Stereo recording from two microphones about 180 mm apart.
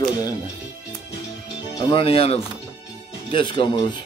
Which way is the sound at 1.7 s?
25° left (ahead or behind).